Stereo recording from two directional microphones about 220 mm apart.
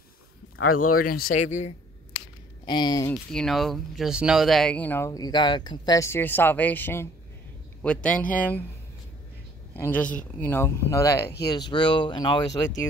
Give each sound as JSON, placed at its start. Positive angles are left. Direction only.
{"t": 0.8, "sound": "speech", "side_deg": 90}
{"t": 1.1, "sound": "speech", "side_deg": 40}
{"t": 2.6, "sound": "speech", "side_deg": 20}
{"t": 3.3, "sound": "speech", "side_deg": 0}
{"t": 9.8, "sound": "speech", "side_deg": 10}